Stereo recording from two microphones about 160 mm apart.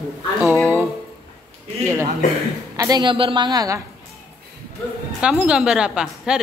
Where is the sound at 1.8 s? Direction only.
15° right (ahead or behind).